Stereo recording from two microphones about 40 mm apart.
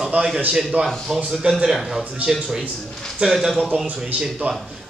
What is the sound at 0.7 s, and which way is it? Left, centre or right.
Speech, right.